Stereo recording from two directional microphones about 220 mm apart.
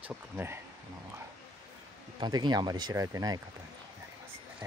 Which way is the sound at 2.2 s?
20° right (ahead or behind).